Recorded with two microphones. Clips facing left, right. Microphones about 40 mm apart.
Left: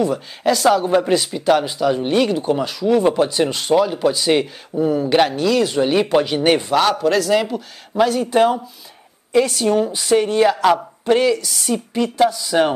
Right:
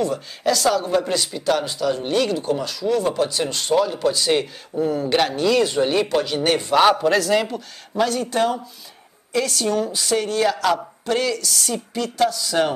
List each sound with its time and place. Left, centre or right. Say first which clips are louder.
0.0 s speech: left 3 dB; centre
6.7 s a woman's voice: even; centre